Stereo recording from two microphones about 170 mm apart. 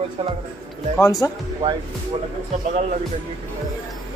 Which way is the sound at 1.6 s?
30° right (ahead or behind).